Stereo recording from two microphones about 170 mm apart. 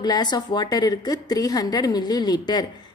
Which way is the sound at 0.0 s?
25° left (ahead or behind).